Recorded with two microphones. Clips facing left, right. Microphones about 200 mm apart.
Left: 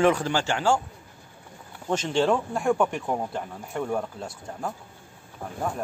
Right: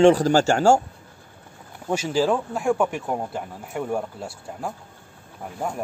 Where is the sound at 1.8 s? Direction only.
10° right (ahead or behind).